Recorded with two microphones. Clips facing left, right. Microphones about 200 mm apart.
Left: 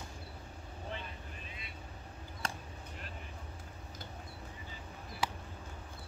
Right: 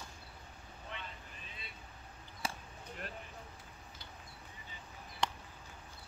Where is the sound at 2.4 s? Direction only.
5° right (ahead or behind).